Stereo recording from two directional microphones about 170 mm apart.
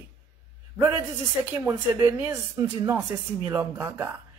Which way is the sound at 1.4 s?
15° right (ahead or behind).